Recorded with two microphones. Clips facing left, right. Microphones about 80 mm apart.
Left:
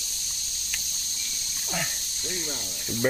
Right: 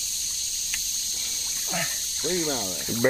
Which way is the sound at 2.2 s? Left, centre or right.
Right.